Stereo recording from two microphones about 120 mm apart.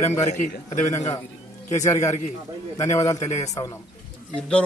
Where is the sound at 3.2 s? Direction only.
75° left (ahead or behind).